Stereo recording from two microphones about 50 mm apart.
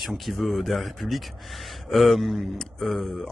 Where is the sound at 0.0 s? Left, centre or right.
Centre.